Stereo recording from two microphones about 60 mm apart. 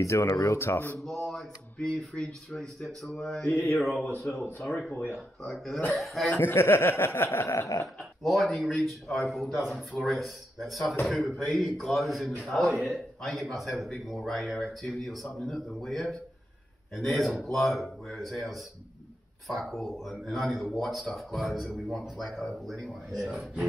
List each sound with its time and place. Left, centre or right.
0.0 s speech: left
0.6 s speech: left
1.0 s speech: centre
3.7 s a man's voice: centre
5.4 s a man's voice: centre
6.3 s a sound: left
7.3 s speech: left
7.6 s speech: left
8.0 s a man's voice: centre